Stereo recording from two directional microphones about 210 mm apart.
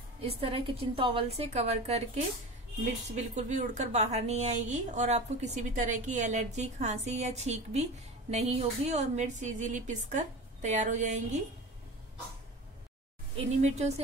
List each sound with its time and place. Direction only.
0.2 s a woman's voice: 25° right (ahead or behind)
13.6 s a woman's voice: 30° right (ahead or behind)